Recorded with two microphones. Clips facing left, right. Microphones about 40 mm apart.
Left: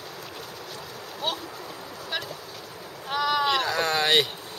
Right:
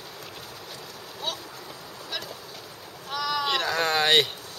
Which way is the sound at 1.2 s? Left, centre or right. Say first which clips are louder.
Left 3 dB; left.